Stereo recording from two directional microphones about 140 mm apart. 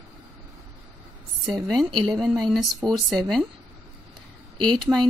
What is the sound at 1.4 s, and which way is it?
Speech, centre (ahead or behind).